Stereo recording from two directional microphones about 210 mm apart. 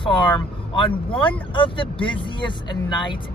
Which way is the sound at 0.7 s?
25° left (ahead or behind).